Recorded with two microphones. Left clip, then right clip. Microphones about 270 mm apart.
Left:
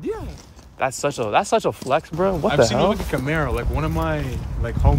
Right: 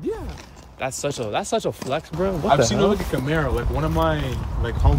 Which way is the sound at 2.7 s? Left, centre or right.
Left.